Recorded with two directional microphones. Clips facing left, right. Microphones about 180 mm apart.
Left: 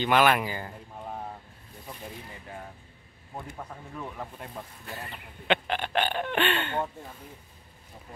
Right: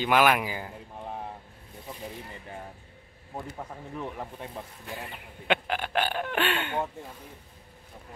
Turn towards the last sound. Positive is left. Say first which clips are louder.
# left 1 dB
turn(degrees=-10)  # may be behind; listen again after turning